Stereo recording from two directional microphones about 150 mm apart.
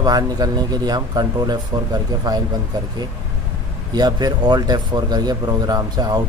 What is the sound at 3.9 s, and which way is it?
Speech, 25° right (ahead or behind).